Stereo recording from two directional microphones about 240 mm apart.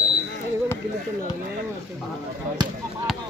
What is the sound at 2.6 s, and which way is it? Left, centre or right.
Basketball bounce, centre.